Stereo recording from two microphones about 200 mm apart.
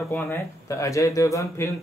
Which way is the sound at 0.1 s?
10° left (ahead or behind).